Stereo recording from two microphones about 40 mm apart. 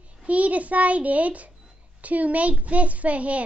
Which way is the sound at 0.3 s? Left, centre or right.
Right.